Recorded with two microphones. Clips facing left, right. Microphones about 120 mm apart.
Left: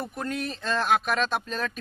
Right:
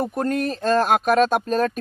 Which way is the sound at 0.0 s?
45° right (ahead or behind).